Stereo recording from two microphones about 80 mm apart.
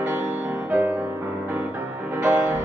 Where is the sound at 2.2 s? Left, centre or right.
Centre.